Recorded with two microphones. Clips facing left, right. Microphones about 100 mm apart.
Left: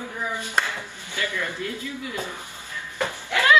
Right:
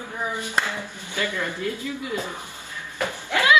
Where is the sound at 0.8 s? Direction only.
15° right (ahead or behind).